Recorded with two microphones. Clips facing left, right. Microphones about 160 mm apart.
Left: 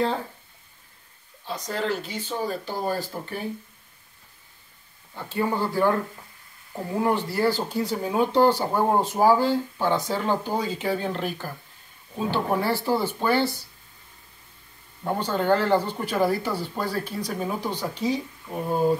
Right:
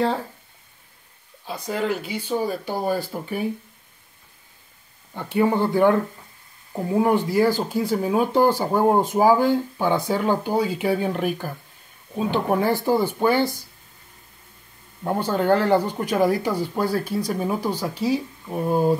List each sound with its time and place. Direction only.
1.7 s speech: 10° right (ahead or behind)
5.1 s speech: 20° right (ahead or behind)
15.0 s speech: 10° right (ahead or behind)